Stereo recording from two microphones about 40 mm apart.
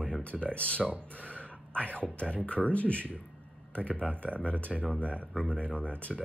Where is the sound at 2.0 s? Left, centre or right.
Left.